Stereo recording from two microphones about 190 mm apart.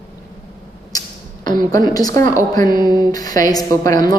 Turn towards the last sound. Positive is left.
turn(degrees=20)  # may be behind; listen again after turning